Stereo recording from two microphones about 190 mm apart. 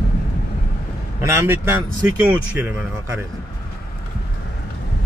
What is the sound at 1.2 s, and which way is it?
Speech, 15° right (ahead or behind).